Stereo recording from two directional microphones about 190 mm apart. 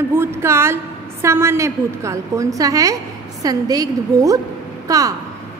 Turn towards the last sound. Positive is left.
turn(degrees=-20)  # may be behind; listen again after turning